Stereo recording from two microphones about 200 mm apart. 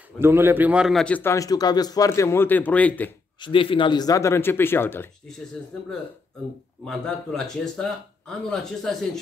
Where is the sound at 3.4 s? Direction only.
25° left (ahead or behind).